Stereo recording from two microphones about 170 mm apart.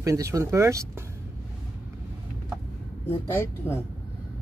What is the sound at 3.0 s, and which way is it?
Speech, 10° left (ahead or behind).